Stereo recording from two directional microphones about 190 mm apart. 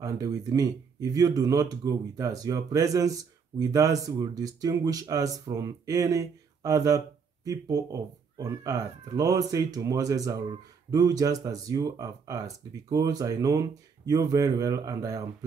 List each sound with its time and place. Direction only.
0.0 s speech: 20° right (ahead or behind)